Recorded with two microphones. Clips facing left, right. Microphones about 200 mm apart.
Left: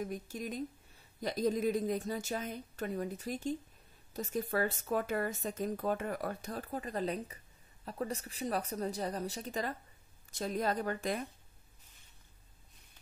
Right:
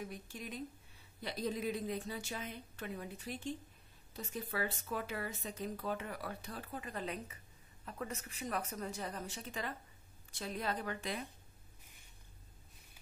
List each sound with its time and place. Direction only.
0.0 s speech: 45° left (ahead or behind)